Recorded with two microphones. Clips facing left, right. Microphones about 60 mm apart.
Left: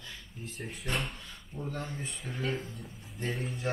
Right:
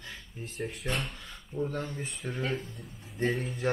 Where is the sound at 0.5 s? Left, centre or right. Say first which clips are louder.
Right 2 dB; centre.